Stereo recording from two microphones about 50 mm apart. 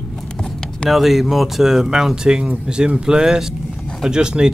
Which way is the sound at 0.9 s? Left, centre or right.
Centre.